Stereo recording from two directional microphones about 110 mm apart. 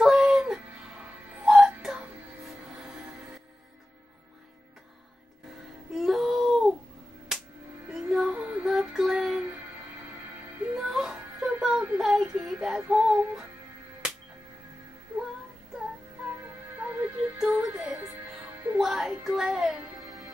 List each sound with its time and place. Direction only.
0.0 s music: centre (ahead or behind)
5.9 s wail: centre (ahead or behind)
7.3 s music: 5° right (ahead or behind)
10.6 s music: 5° right (ahead or behind)
16.3 s music: 20° right (ahead or behind)
18.8 s music: 5° right (ahead or behind)